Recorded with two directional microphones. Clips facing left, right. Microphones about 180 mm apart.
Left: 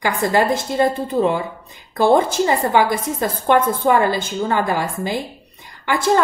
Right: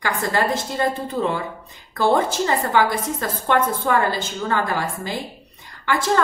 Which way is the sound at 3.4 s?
15° left (ahead or behind).